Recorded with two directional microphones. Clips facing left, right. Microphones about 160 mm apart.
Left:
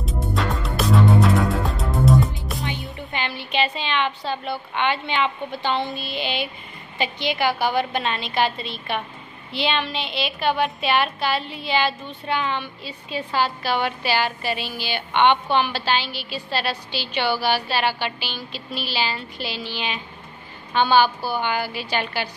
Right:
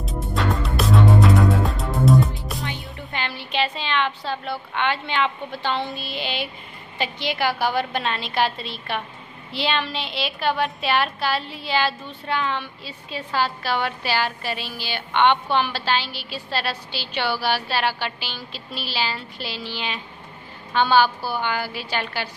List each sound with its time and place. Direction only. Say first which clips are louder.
0.0 s music: even; centre (ahead or behind)
5.9 s a woman's voice: left 2 dB; centre (ahead or behind)
18.5 s a sound: left 3 dB; 35° right (ahead or behind)
18.9 s a woman's voice: even; centre (ahead or behind)